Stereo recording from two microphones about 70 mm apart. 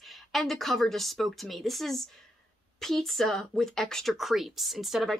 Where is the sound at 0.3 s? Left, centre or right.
Centre.